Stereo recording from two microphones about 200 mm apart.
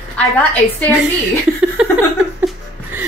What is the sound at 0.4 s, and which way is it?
Speech, 10° left (ahead or behind).